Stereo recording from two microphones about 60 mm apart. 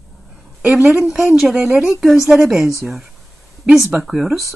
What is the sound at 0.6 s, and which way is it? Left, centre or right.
A woman's voice, centre.